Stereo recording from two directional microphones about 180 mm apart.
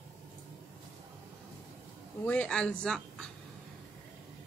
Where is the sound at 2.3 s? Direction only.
5° left (ahead or behind).